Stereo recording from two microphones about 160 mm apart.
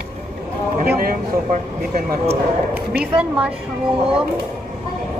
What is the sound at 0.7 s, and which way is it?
Speech, 60° right (ahead or behind).